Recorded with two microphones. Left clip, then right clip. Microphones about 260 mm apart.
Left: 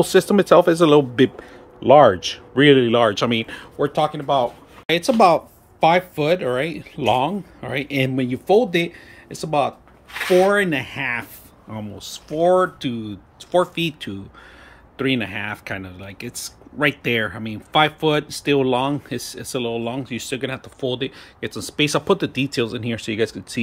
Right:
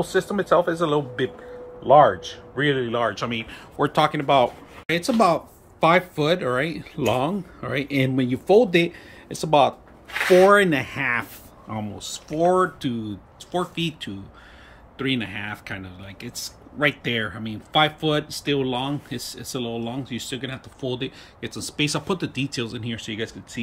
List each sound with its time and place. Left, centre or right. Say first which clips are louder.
0.0 s speech: left 7 dB; left
3.7 s speech: even; centre
4.8 s speech: left 5 dB; centre